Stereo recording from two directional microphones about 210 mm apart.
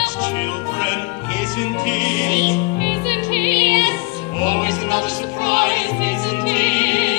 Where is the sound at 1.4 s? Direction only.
20° right (ahead or behind).